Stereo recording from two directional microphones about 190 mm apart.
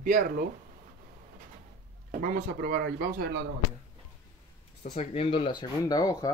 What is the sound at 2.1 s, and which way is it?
Speech, 45° right (ahead or behind).